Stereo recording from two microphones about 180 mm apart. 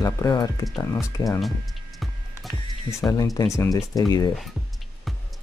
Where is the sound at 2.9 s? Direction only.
15° left (ahead or behind).